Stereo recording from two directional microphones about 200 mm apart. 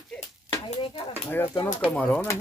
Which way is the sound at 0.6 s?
25° left (ahead or behind).